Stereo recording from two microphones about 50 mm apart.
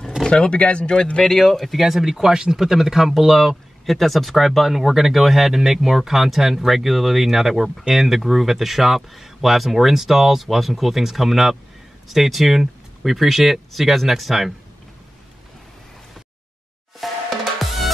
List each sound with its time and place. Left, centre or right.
0.3 s speech: left
1.2 s speech: centre
17.0 s drum: centre